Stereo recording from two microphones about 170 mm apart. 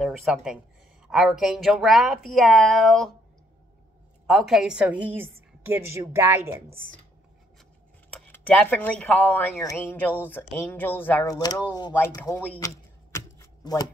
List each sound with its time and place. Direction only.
0.0 s a woman's voice: centre (ahead or behind)
4.3 s a woman's voice: centre (ahead or behind)
8.3 s speech: 10° left (ahead or behind)
11.3 s speech: 20° left (ahead or behind)
12.5 s typewriter: 20° left (ahead or behind)